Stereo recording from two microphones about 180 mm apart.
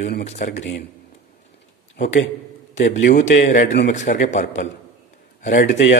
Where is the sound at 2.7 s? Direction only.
40° left (ahead or behind).